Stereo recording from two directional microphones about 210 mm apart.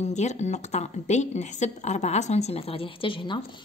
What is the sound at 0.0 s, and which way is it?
Speech, 35° left (ahead or behind).